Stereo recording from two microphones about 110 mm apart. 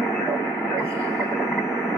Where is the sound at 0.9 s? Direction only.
30° right (ahead or behind).